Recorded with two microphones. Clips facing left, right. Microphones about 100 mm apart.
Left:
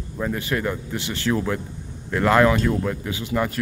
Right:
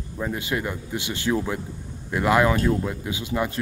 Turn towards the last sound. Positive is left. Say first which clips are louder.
# left 2 dB
turn(degrees=-15)  # may be behind; listen again after turning